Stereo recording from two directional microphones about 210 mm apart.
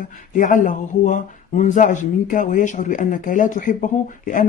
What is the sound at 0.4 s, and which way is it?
Speech, 35° left (ahead or behind).